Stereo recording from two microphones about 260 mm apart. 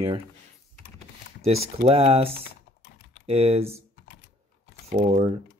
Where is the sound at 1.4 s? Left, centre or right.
Right.